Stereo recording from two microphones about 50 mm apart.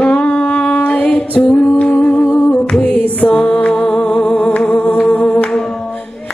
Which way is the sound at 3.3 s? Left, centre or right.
Left.